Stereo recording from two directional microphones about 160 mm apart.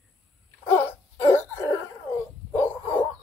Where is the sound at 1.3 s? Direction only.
15° left (ahead or behind).